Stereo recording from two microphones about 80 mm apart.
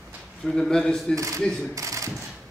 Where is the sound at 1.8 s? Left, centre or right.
Right.